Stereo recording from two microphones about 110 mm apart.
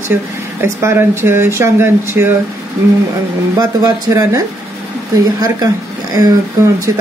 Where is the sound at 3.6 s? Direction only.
35° right (ahead or behind).